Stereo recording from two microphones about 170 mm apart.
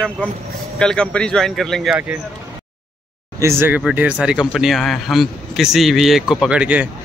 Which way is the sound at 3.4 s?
15° right (ahead or behind).